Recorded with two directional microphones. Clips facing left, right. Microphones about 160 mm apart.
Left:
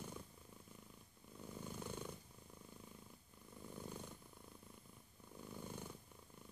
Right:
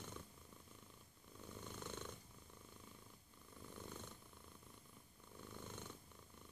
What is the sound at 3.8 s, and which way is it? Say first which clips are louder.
Purr: left 3 dB; 10° left (ahead or behind).